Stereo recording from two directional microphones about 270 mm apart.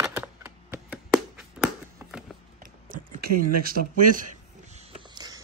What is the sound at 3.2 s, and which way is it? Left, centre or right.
Speech, right.